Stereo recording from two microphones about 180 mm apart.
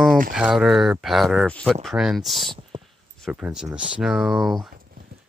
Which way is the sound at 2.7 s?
25° right (ahead or behind).